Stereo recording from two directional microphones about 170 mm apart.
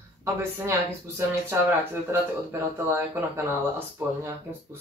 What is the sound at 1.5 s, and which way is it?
Speech, 15° right (ahead or behind).